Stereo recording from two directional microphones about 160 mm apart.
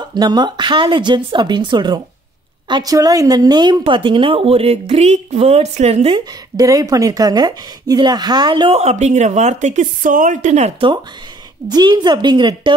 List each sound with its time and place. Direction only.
0.1 s a woman's voice: 25° right (ahead or behind); by 10.9 s 45° right (ahead or behind)
11.7 s speech: 25° right (ahead or behind)